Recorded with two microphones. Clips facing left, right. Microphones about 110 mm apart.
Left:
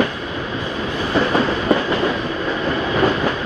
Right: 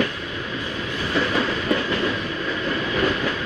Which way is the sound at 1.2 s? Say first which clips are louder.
Left 5 dB; 35° left (ahead or behind).